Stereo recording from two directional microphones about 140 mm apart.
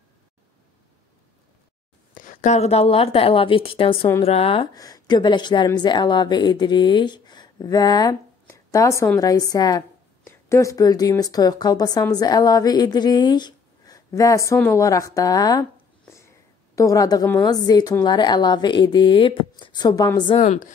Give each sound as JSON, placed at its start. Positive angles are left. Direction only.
{"t": 2.1, "sound": "a woman's voice", "side_deg": 70}
{"t": 4.7, "sound": "a woman's voice", "side_deg": 25}
{"t": 16.7, "sound": "a woman's voice", "side_deg": 25}
{"t": 20.3, "sound": "a woman's voice", "side_deg": 60}